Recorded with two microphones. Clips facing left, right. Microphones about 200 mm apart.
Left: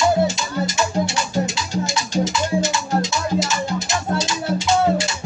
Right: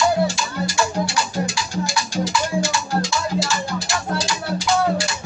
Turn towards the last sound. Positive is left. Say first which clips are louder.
# left 2 dB
turn(degrees=20)  # may be behind; listen again after turning